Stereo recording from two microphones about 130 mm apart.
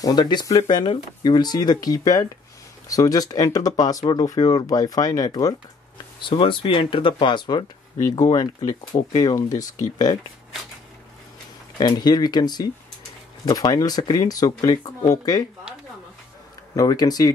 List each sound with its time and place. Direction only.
0.0 s speech: 35° left (ahead or behind)
6.2 s speech: 40° left (ahead or behind)
11.8 s speech: 30° left (ahead or behind)
16.7 s speech: 30° left (ahead or behind)